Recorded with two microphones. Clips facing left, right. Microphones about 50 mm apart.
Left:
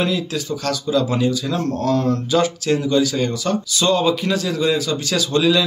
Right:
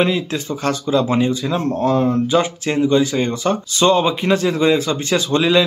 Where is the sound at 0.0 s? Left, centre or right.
Right.